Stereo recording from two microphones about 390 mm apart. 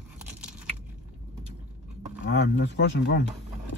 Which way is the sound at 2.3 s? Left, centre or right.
Left.